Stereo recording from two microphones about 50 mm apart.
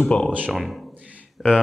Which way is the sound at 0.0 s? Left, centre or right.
Left.